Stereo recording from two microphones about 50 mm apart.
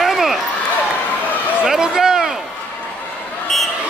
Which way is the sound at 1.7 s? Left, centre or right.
Centre.